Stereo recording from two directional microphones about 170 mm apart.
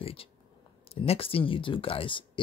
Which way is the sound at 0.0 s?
35° left (ahead or behind).